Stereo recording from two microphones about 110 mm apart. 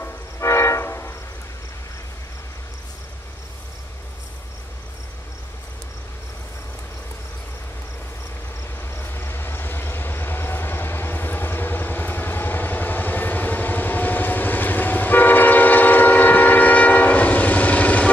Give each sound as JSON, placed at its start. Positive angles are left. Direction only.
{"t": 0.0, "sound": "train", "side_deg": 25}
{"t": 8.7, "sound": "vehicle", "side_deg": 20}